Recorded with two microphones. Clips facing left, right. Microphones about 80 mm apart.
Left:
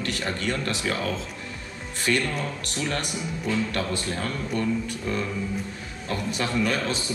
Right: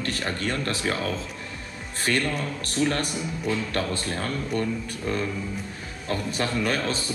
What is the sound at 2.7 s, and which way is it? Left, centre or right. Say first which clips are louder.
Speech: right 5 dB; right.